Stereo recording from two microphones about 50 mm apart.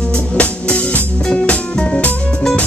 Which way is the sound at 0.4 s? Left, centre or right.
Left.